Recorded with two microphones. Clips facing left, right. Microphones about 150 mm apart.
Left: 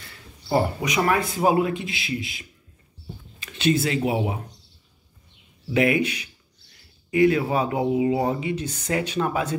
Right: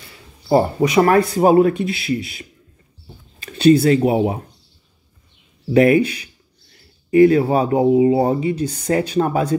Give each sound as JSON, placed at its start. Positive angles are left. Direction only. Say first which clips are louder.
{"t": 0.5, "sound": "speech", "louder": "right 7 dB", "side_deg": -35}
{"t": 5.7, "sound": "speech", "louder": "right 8 dB", "side_deg": -40}